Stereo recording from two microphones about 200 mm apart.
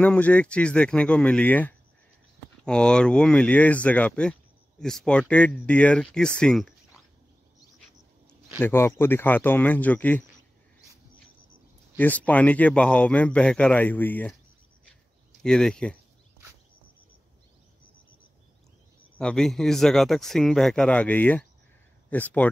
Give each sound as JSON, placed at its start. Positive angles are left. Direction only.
{"t": 0.0, "sound": "speech", "side_deg": 5}
{"t": 8.5, "sound": "speech", "side_deg": 10}
{"t": 12.0, "sound": "speech", "side_deg": 5}
{"t": 15.4, "sound": "speech", "side_deg": 5}
{"t": 19.1, "sound": "speech", "side_deg": 5}